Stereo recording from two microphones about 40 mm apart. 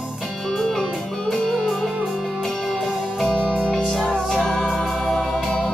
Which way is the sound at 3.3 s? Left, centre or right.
Left.